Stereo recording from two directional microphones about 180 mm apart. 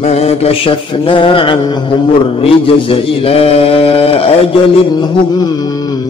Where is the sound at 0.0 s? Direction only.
35° left (ahead or behind).